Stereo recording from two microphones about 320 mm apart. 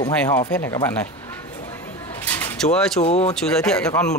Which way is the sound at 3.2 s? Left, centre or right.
Centre.